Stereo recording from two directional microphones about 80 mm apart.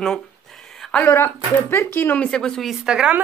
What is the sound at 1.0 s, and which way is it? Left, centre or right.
Speech, left.